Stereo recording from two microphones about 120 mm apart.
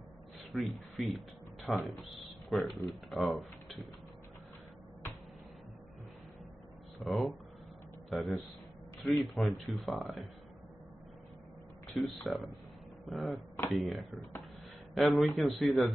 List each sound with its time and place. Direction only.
0.5 s speech: centre (ahead or behind)
7.0 s a man's voice: centre (ahead or behind)
11.9 s speech: centre (ahead or behind)